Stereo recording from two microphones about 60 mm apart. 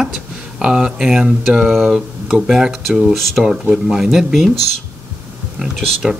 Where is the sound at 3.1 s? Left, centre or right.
Centre.